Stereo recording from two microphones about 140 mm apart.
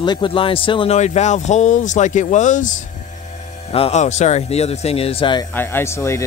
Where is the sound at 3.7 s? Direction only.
45° left (ahead or behind).